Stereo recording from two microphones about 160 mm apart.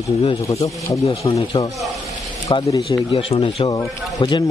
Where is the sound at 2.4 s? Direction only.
25° left (ahead or behind).